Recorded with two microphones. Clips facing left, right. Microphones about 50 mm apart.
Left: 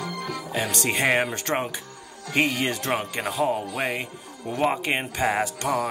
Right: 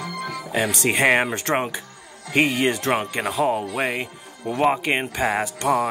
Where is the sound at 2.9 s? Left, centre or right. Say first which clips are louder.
Right 4 dB; right.